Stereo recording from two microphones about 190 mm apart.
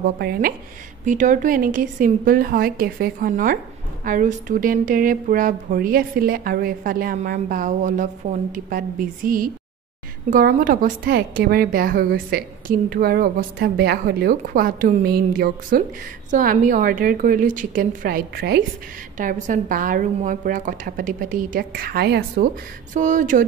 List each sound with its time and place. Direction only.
0.2 s speech: 50° right (ahead or behind)
1.0 s speech: 40° right (ahead or behind)
19.1 s speech: 40° right (ahead or behind)
22.9 s speech: 40° right (ahead or behind)